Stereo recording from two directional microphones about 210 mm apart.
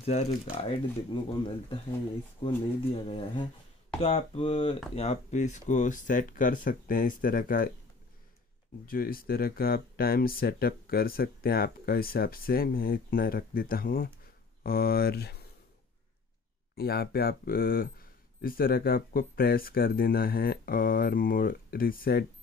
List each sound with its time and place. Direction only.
0.0 s speech: 30° left (ahead or behind)
8.8 s speech: 45° left (ahead or behind)
16.7 s speech: 45° left (ahead or behind)